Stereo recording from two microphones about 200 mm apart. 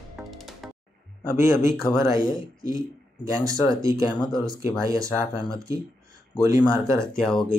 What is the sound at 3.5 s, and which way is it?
Speech, 15° right (ahead or behind).